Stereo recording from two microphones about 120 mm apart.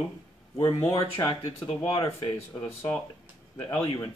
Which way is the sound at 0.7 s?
25° left (ahead or behind).